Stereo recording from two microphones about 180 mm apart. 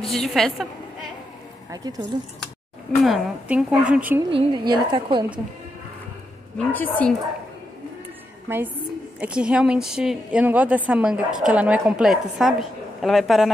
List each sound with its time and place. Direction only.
0.0 s a woman's voice: centre (ahead or behind)
1.7 s a woman's voice: 20° right (ahead or behind)
3.0 s a woman's voice: 5° right (ahead or behind)
4.3 s a woman's voice: 30° right (ahead or behind)
6.7 s a woman's voice: 10° left (ahead or behind)
8.5 s a woman's voice: 15° right (ahead or behind)